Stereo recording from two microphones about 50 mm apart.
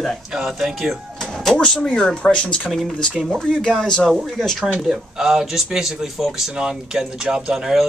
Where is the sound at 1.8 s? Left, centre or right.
Left; by 4.6 s centre.